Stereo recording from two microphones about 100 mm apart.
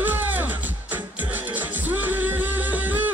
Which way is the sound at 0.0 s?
20° right (ahead or behind).